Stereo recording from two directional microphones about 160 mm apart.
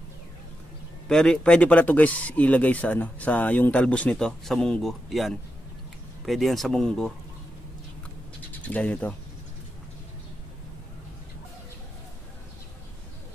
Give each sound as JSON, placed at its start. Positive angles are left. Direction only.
{"t": 1.0, "sound": "speech", "side_deg": 5}
{"t": 8.6, "sound": "speech", "side_deg": 10}